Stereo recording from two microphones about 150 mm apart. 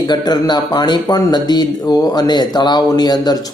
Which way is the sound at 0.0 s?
30° left (ahead or behind).